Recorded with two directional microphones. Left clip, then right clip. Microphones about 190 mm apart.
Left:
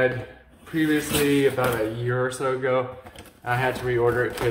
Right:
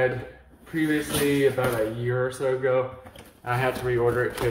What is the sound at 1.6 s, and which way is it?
Speech, 25° left (ahead or behind).